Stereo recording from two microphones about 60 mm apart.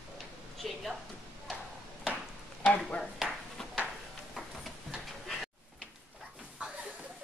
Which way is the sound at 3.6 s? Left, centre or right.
Centre.